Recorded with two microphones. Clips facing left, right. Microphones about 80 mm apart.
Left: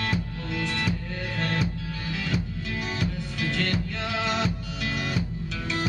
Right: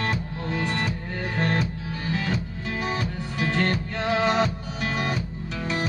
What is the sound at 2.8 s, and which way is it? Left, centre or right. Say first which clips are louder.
Music: right 3 dB; right.